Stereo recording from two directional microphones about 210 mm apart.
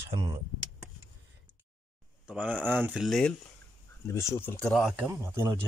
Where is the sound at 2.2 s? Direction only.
5° right (ahead or behind).